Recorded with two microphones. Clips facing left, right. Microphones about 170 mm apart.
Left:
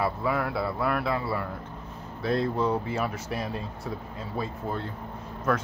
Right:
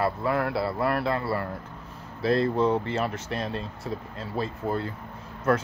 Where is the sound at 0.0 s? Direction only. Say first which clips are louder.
Right 2 dB; centre (ahead or behind).